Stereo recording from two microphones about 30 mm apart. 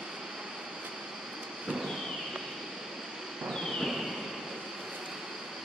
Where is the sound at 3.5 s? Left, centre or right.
Centre.